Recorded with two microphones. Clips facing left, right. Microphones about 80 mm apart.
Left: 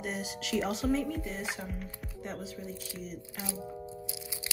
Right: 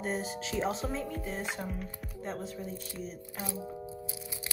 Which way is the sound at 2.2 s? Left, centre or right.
Right.